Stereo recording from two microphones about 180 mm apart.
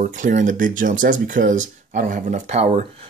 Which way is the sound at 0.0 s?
45° right (ahead or behind).